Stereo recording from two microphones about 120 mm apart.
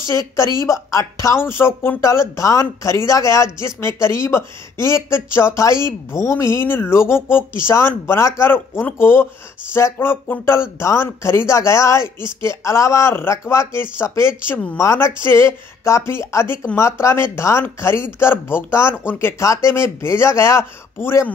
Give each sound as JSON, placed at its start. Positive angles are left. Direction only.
{"t": 0.1, "sound": "a woman's voice", "side_deg": 25}